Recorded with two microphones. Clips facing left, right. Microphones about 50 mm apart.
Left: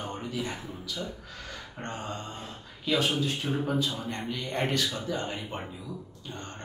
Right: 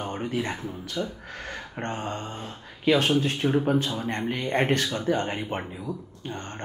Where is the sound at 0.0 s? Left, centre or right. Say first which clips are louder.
Right 5 dB; right.